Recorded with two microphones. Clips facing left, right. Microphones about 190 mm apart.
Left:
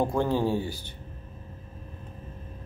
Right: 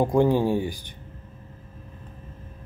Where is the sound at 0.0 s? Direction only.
15° right (ahead or behind).